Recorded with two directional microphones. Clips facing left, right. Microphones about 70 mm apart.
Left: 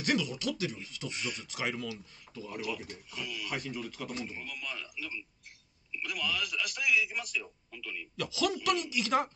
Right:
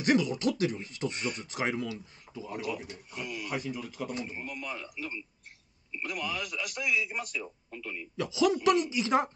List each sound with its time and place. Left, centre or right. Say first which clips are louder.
0.0 s speech: right 5 dB; right
2.3 s speech: right 3 dB; centre
3.1 s speech: right 3 dB; right
3.4 s speech: right 2 dB; centre
4.4 s a man's voice: right 3 dB; right
7.4 s speech: right 4 dB; right